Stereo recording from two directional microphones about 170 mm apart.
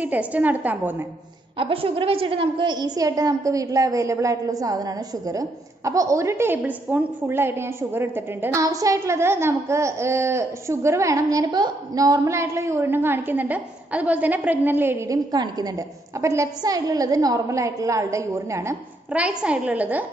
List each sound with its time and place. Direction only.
0.0 s a woman's voice: 10° right (ahead or behind)
1.6 s a woman's voice: 30° right (ahead or behind); by 20.1 s 10° right (ahead or behind)